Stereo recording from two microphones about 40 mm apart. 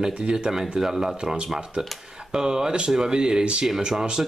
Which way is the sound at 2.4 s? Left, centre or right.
Centre.